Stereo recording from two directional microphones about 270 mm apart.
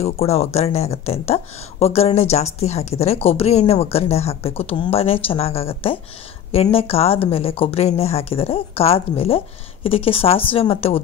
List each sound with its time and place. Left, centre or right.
0.0 s speech: left